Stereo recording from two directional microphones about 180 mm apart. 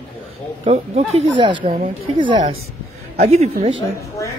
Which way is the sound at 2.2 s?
25° right (ahead or behind).